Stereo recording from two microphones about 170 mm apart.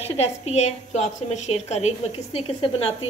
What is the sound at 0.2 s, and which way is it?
A woman's voice, 40° left (ahead or behind).